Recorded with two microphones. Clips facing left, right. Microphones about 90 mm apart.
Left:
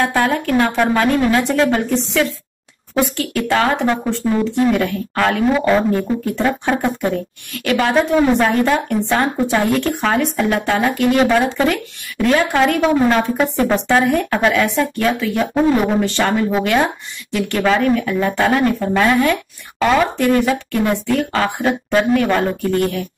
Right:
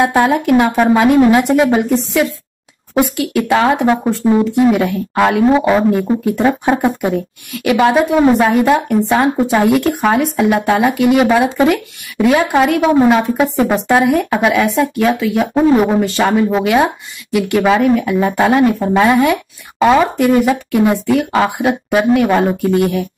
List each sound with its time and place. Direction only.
0.0 s speech: 15° right (ahead or behind)
12.9 s speech: 20° right (ahead or behind)
13.2 s speech: 5° right (ahead or behind)